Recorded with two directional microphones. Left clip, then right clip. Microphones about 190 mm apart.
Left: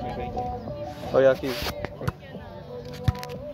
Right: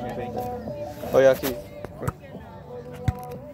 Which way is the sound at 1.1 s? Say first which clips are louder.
Right 2 dB; centre (ahead or behind).